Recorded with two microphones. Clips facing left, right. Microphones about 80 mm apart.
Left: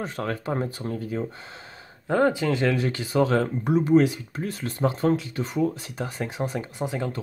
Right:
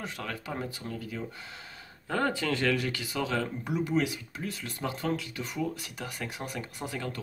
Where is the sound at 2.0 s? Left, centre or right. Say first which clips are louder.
Left 7 dB; centre.